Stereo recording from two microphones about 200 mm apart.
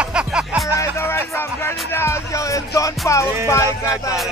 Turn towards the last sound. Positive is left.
turn(degrees=15)  # may be behind; listen again after turning